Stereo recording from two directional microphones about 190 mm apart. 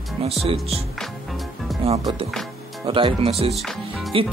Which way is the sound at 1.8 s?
30° right (ahead or behind).